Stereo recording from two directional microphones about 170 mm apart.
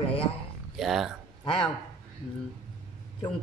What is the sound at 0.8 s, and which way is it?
Speech, centre (ahead or behind).